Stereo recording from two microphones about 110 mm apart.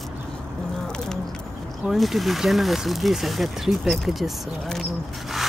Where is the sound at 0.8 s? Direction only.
5° left (ahead or behind).